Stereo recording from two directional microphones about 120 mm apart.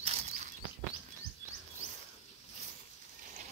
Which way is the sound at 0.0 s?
65° right (ahead or behind).